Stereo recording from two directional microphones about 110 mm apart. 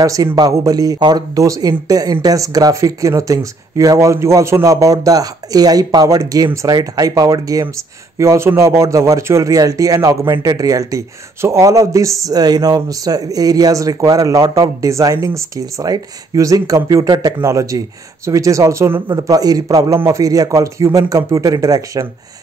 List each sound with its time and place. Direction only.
0.0 s speech: 30° right (ahead or behind)
19.0 s speech: 35° right (ahead or behind)